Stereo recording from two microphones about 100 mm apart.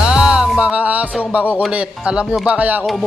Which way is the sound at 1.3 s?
15° right (ahead or behind).